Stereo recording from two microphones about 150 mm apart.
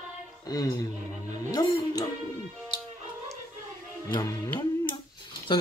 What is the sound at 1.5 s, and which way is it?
Music, 25° left (ahead or behind).